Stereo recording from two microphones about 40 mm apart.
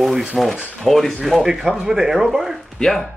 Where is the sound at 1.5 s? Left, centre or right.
Centre.